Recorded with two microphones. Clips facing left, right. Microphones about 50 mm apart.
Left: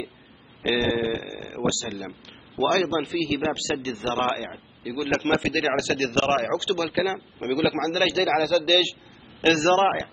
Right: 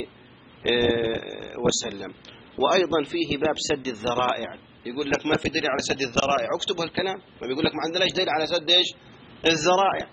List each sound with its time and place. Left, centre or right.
0.6 s a man's voice: centre